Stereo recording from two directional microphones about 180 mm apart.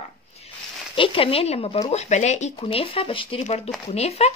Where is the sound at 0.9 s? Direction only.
30° left (ahead or behind).